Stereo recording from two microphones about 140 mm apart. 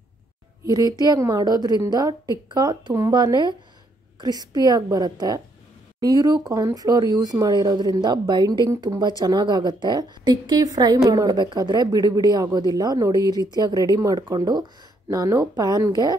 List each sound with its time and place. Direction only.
0.7 s a woman's voice: 25° right (ahead or behind)